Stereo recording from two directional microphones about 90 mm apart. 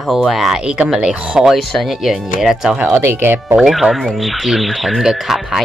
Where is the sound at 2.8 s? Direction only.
25° right (ahead or behind).